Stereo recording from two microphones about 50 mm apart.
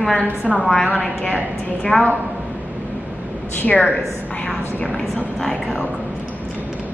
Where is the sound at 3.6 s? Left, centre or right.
Left.